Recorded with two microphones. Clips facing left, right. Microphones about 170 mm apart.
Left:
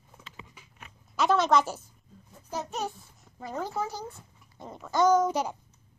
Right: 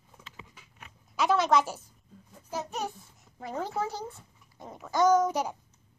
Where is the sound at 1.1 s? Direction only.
10° right (ahead or behind).